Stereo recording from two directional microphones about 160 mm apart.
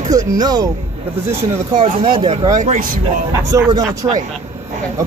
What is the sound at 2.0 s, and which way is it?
Speech, 30° right (ahead or behind).